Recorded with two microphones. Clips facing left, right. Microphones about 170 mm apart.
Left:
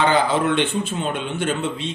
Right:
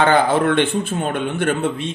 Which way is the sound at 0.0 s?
50° right (ahead or behind).